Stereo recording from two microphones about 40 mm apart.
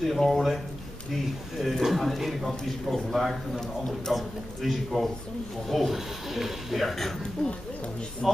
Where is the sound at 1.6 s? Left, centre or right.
Centre.